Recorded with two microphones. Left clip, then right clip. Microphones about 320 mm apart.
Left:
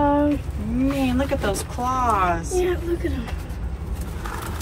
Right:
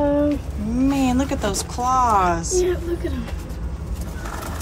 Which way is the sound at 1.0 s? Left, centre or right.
Centre.